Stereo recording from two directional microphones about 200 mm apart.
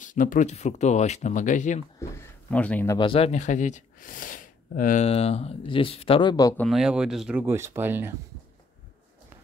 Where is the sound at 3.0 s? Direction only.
30° left (ahead or behind).